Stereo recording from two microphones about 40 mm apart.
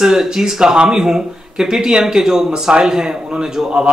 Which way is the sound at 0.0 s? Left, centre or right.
Centre.